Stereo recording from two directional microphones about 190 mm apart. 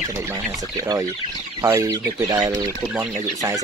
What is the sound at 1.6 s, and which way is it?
Speech, 15° right (ahead or behind).